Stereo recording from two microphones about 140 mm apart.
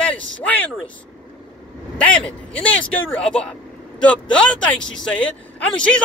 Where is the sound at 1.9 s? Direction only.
10° left (ahead or behind).